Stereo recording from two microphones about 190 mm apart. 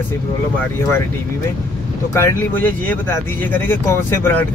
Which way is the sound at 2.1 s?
15° left (ahead or behind).